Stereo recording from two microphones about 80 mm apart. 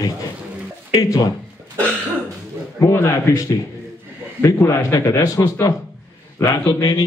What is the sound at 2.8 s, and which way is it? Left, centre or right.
Speech, left.